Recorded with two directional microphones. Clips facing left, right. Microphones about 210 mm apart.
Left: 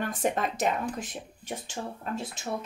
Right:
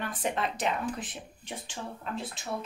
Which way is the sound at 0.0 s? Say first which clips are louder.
Left 3 dB; 45° left (ahead or behind).